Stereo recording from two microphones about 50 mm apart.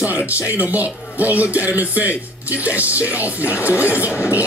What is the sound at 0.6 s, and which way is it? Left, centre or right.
Speech, right.